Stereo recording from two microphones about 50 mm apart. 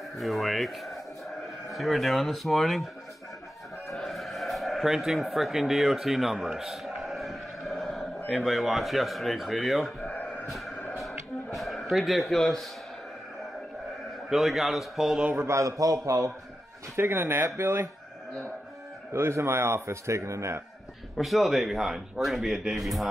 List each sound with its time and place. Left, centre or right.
0.2 s speech: centre
3.8 s a sound: centre
8.5 s speech: centre
10.5 s music: centre
11.5 s speech: centre
14.3 s speech: centre
15.3 s a man's voice: right
16.9 s speech: right
19.1 s a man's voice: right
21.2 s speech: centre